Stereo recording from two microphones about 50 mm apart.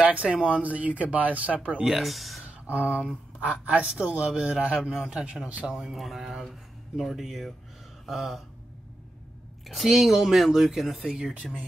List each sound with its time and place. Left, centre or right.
0.0 s a man's voice: right
1.9 s speech: centre
2.4 s a sound: right
3.3 s a man's voice: right
4.7 s speech: centre
5.1 s a man's voice: centre
5.7 s speech: centre
9.7 s speech: centre